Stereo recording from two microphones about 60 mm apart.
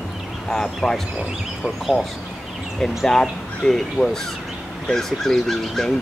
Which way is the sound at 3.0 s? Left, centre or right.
Centre.